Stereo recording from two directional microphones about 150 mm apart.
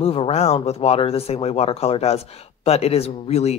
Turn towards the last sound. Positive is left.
turn(degrees=45)  # may be behind; listen again after turning